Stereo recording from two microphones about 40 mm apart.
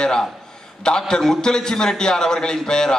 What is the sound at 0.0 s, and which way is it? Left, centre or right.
A man's voice, centre.